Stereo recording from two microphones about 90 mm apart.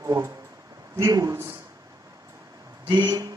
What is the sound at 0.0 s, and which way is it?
Speech, 35° right (ahead or behind).